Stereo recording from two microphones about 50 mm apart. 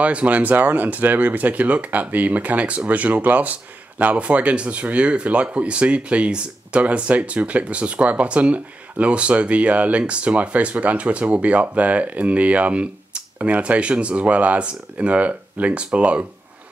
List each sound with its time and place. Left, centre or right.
0.0 s speech: right